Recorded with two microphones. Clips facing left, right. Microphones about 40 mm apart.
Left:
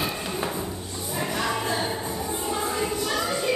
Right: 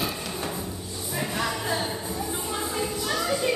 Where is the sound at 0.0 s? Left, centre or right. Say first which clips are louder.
Left 2 dB; centre.